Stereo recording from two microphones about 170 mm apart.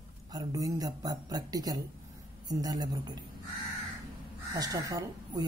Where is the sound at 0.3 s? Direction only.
20° right (ahead or behind).